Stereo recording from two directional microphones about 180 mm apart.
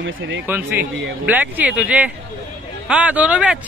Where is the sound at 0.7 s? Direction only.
75° right (ahead or behind).